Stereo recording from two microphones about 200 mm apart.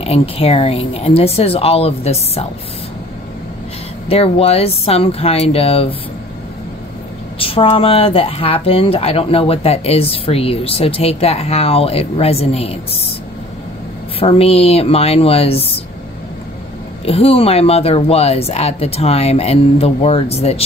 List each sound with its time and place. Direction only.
0.0 s speech: 30° left (ahead or behind)
4.1 s speech: 30° left (ahead or behind)
7.3 s speech: 25° left (ahead or behind)
14.2 s speech: 30° left (ahead or behind)
17.0 s speech: 30° left (ahead or behind)